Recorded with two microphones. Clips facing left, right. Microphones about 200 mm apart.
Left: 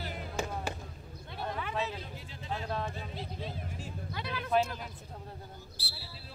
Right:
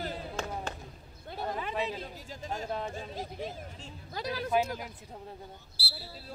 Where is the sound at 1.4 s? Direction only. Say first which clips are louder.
Right 2 dB; 20° right (ahead or behind).